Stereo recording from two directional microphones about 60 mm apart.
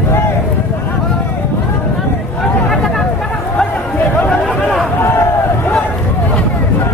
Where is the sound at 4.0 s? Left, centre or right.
Left.